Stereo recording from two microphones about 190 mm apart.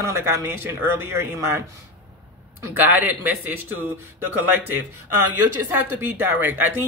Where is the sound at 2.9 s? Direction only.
10° right (ahead or behind).